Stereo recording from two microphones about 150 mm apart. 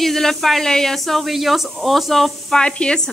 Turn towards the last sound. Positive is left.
turn(degrees=5)  # may be behind; listen again after turning